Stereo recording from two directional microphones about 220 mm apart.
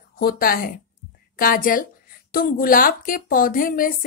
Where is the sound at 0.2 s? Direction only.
45° left (ahead or behind).